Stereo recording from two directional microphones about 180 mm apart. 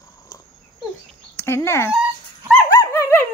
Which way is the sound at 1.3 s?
15° left (ahead or behind).